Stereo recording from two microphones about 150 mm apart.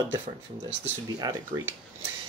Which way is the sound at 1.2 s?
25° right (ahead or behind).